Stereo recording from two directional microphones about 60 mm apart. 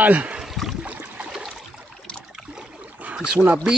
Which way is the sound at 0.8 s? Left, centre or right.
Right.